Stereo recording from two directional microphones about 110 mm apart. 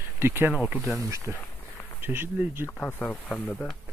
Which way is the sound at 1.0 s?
30° right (ahead or behind).